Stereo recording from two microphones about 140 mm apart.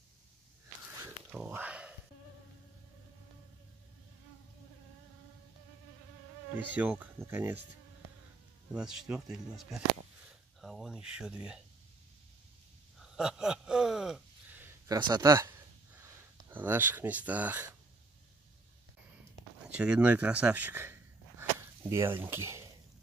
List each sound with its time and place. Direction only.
1.3 s a sound: 10° right (ahead or behind)
6.5 s speech: 10° right (ahead or behind)
8.7 s speech: 5° right (ahead or behind)
13.0 s speech: 5° right (ahead or behind)
14.9 s speech: 30° right (ahead or behind); by 17.6 s 10° right (ahead or behind)
19.7 s speech: 10° right (ahead or behind)